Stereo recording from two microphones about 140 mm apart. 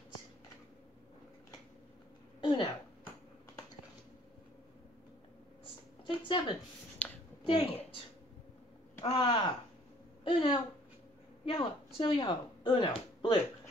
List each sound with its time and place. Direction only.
2.4 s speech: 35° left (ahead or behind)
6.0 s speech: 35° left (ahead or behind)
7.0 s a sound: 10° left (ahead or behind)
7.4 s a woman's voice: 40° left (ahead or behind)
9.0 s a woman's voice: 40° left (ahead or behind)